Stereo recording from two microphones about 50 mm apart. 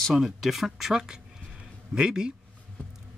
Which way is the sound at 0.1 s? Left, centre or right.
Centre.